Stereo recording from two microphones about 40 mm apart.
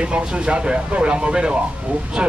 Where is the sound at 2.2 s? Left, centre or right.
Right.